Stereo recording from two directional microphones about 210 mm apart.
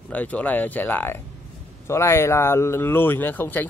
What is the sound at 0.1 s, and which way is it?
Speech, 5° left (ahead or behind).